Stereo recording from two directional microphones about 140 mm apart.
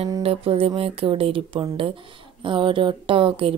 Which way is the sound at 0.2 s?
45° right (ahead or behind).